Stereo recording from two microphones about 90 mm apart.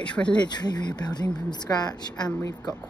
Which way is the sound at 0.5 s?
50° left (ahead or behind).